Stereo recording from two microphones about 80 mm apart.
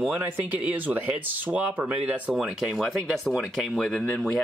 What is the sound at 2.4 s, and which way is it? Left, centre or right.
Speech, centre.